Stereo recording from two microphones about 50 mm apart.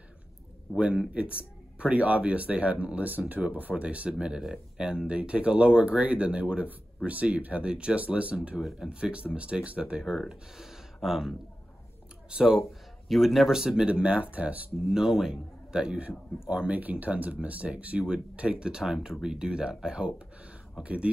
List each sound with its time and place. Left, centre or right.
0.7 s a man's voice: centre
1.1 s speech: right
8.5 s speech: centre
8.8 s speech: right
10.6 s a sound: centre
12.3 s speech: centre
13.1 s speech: centre
13.6 s speech: centre
13.8 s speech: right
15.0 s a man's voice: centre
16.4 s speech: right